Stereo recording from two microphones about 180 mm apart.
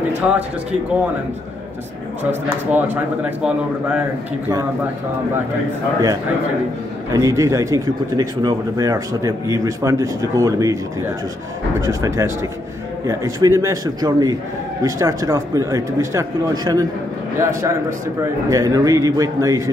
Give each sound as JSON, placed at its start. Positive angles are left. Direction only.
{"t": 0.1, "sound": "speech", "side_deg": -5}
{"t": 2.7, "sound": "speech", "side_deg": -10}
{"t": 7.1, "sound": "speech", "side_deg": -15}
{"t": 11.8, "sound": "speech", "side_deg": -20}